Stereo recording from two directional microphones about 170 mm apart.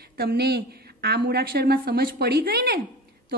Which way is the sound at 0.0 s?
65° right (ahead or behind).